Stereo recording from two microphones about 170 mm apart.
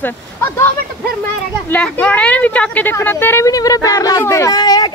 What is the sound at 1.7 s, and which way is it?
Speech, 10° left (ahead or behind).